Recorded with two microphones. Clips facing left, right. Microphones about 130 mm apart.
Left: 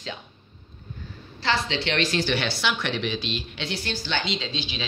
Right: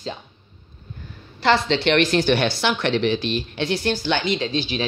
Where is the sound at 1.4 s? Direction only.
55° right (ahead or behind).